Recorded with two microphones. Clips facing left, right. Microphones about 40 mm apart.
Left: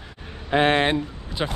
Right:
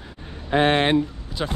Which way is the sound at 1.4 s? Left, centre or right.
Centre.